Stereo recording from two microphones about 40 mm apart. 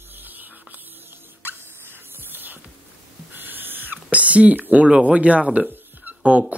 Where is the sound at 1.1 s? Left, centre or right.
Right.